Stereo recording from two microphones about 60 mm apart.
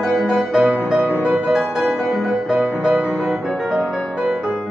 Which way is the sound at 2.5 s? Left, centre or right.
Right.